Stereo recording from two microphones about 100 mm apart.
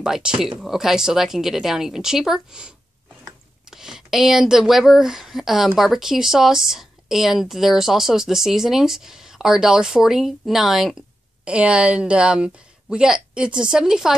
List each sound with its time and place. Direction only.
0.0 s speech: 5° right (ahead or behind)
3.7 s a woman's voice: 5° right (ahead or behind)